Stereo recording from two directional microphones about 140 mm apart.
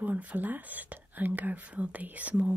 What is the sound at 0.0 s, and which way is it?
Speech, 10° right (ahead or behind).